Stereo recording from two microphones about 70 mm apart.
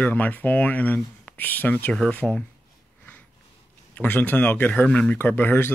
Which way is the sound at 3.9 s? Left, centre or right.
Left.